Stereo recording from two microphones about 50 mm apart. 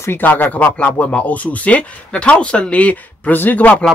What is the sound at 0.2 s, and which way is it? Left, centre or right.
Speech, left.